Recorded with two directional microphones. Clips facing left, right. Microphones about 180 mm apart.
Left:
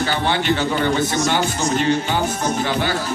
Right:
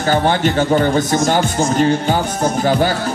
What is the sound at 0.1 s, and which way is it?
A man's voice, 45° right (ahead or behind).